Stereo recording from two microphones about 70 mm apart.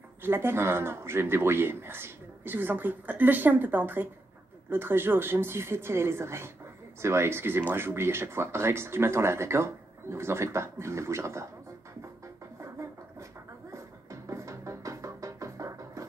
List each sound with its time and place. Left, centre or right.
0.2 s speech: right
13.7 s music: right